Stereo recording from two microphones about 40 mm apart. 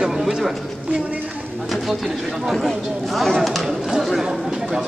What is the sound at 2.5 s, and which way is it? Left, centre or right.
Speech, centre.